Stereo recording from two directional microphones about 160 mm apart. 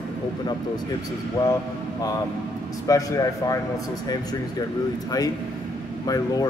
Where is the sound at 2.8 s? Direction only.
20° left (ahead or behind).